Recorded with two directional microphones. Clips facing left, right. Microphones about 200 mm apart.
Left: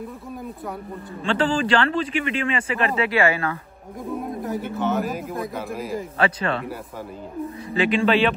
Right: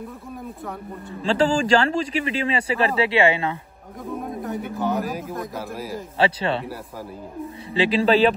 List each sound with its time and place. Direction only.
1.2 s speech: 40° right (ahead or behind)
4.1 s speech: centre (ahead or behind)
6.1 s speech: 30° right (ahead or behind)
7.7 s speech: 30° right (ahead or behind)